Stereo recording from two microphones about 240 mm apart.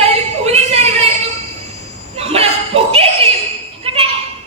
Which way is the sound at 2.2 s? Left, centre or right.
Right.